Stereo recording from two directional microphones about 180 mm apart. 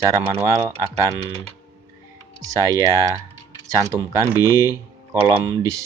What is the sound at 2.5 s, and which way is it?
Speech, 20° right (ahead or behind).